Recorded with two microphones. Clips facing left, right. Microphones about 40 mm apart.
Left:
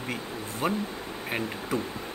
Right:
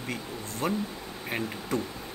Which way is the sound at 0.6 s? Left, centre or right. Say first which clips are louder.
Left 1 dB; left.